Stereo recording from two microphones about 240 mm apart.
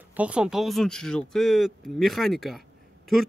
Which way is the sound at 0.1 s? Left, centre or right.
Centre.